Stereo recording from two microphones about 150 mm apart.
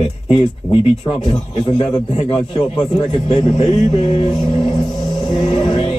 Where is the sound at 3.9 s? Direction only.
30° left (ahead or behind).